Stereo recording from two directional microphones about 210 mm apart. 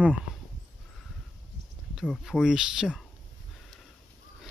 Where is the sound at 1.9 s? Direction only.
Centre (ahead or behind).